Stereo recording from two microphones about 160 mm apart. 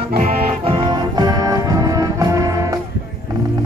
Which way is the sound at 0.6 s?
30° right (ahead or behind).